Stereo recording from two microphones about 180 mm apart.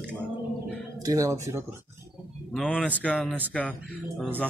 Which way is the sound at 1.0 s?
20° right (ahead or behind).